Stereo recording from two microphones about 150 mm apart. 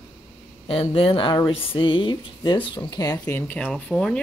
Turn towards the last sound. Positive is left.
turn(degrees=5)  # may be behind; listen again after turning